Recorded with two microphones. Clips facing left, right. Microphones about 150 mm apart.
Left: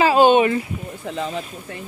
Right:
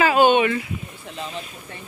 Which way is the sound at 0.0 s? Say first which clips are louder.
Left 2 dB; 30° left (ahead or behind).